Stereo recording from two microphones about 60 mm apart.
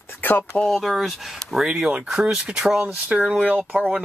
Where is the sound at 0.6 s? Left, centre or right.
Centre.